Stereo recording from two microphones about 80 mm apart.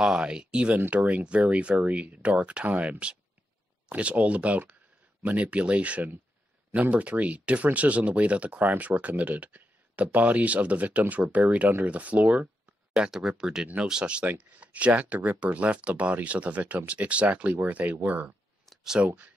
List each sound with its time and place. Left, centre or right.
0.0 s speech: centre